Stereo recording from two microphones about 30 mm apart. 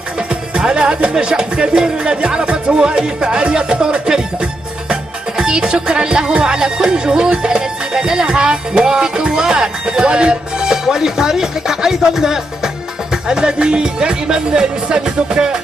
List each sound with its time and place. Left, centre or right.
0.3 s music: right
5.4 s music: right
10.6 s speech: right
13.4 s music: right